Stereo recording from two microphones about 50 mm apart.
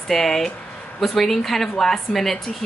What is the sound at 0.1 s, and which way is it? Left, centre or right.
A woman's voice, centre.